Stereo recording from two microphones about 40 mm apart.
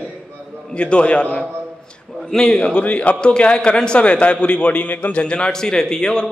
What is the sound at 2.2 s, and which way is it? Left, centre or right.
Speech, centre.